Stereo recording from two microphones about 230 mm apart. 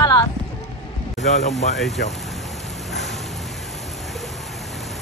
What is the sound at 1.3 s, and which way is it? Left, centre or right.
Speech, left.